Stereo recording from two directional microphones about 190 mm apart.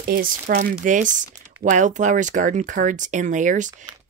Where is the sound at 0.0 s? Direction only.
45° right (ahead or behind).